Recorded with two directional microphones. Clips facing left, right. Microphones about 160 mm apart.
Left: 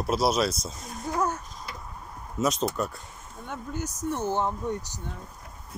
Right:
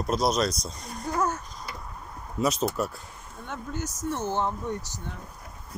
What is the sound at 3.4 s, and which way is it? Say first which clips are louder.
Speech: even; 10° left (ahead or behind).